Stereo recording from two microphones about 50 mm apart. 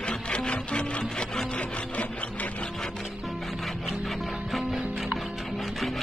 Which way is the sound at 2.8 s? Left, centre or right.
Centre.